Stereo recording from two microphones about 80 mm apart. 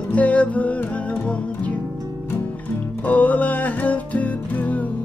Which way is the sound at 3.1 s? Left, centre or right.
Centre.